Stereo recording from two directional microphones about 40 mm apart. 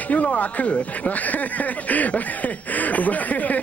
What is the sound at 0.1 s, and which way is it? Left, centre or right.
Speech, left.